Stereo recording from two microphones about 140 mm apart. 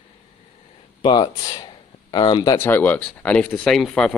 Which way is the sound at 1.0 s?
30° left (ahead or behind).